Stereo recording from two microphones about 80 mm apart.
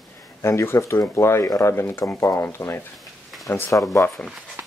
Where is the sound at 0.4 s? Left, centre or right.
Left.